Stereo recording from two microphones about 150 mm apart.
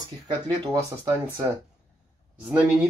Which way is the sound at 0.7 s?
20° right (ahead or behind).